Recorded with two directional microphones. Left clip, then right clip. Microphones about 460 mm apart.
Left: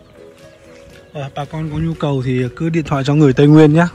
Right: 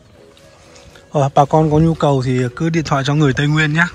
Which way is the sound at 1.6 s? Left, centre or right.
Centre.